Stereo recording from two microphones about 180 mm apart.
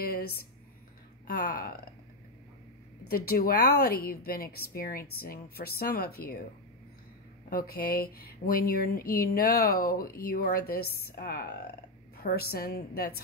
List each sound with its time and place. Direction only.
0.0 s a sound: 55° left (ahead or behind)
1.2 s speech: 50° left (ahead or behind)
3.1 s speech: 55° left (ahead or behind)
7.4 s speech: 55° left (ahead or behind)